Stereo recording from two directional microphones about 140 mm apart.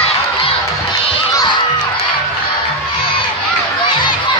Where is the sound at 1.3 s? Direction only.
25° left (ahead or behind).